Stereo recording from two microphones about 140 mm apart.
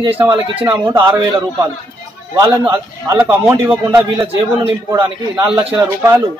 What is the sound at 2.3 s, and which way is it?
Speech, 30° right (ahead or behind).